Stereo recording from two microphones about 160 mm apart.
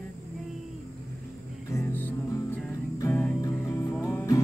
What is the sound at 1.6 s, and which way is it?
Music, 15° left (ahead or behind).